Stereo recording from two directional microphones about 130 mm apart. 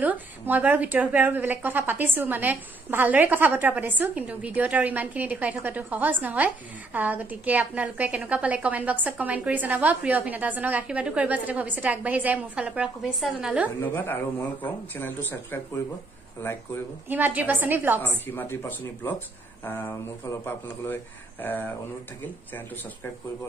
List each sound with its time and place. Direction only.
0.0 s a woman's voice: 10° right (ahead or behind)
13.7 s speech: 15° left (ahead or behind)
17.1 s a woman's voice: 15° right (ahead or behind)
18.2 s speech: 15° left (ahead or behind)